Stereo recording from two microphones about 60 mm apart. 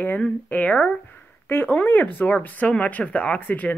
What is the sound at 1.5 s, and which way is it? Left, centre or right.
Speech, left.